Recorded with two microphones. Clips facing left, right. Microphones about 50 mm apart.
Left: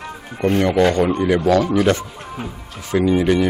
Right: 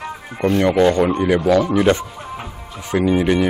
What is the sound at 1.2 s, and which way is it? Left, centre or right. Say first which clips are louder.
Speech: even; centre.